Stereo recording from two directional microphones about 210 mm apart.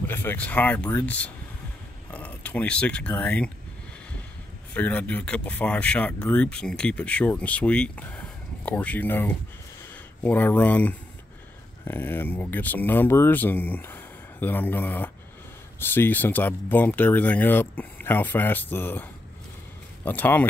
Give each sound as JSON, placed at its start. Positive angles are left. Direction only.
{"t": 0.0, "sound": "speech", "side_deg": 10}
{"t": 4.7, "sound": "speech", "side_deg": 5}
{"t": 20.1, "sound": "speech", "side_deg": 10}